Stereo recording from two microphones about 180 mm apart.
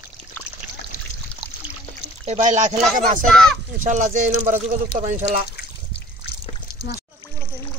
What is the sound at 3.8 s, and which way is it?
Speech, 45° right (ahead or behind).